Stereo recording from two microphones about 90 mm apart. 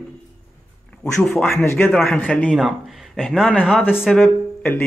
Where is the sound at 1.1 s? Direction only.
5° left (ahead or behind).